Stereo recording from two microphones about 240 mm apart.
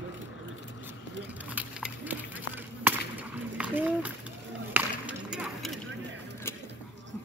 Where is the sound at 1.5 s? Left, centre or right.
Centre.